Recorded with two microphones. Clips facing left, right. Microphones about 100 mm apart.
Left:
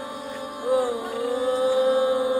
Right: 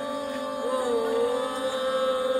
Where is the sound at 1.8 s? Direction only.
20° left (ahead or behind).